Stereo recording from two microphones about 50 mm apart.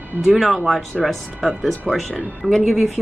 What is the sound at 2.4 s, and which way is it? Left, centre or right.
Speech, centre.